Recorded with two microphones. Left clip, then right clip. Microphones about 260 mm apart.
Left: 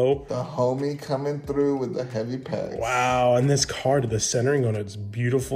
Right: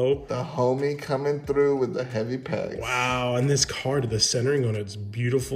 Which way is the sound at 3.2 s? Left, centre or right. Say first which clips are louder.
Left 4 dB; centre.